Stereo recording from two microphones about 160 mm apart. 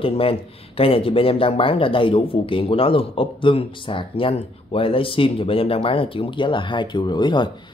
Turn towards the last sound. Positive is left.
turn(degrees=30)  # may be behind; listen again after turning